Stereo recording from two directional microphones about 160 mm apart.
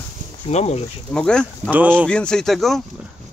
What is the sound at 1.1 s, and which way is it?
Speech, 5° left (ahead or behind).